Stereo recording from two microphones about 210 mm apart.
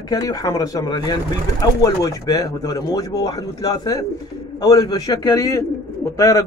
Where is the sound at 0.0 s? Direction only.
15° left (ahead or behind).